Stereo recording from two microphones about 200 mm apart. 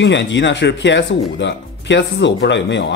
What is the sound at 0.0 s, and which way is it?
Speech, 65° left (ahead or behind).